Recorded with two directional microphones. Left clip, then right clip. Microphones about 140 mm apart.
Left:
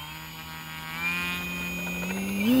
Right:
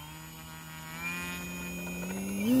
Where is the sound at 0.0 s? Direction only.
5° right (ahead or behind).